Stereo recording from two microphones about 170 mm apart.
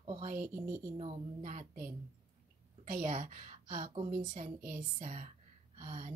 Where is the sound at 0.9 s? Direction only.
40° right (ahead or behind).